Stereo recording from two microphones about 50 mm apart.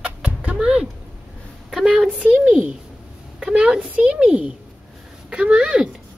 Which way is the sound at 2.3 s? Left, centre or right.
Right.